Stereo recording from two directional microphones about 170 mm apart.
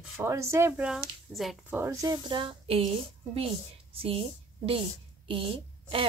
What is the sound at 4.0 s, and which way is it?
Speech, 35° right (ahead or behind).